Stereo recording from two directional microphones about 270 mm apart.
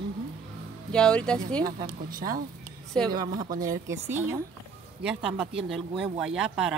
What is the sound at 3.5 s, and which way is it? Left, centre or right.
A woman's voice, centre.